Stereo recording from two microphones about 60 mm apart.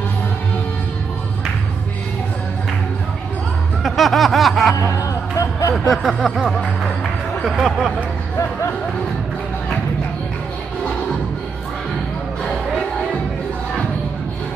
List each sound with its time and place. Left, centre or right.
3.8 s snicker: centre
4.9 s music: left
5.9 s a sound: centre